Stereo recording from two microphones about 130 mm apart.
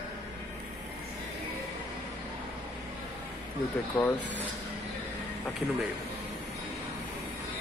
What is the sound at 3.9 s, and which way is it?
Speech, 10° left (ahead or behind).